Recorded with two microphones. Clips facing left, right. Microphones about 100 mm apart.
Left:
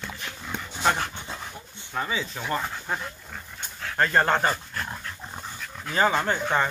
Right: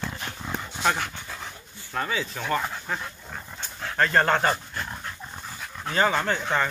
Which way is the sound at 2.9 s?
25° left (ahead or behind).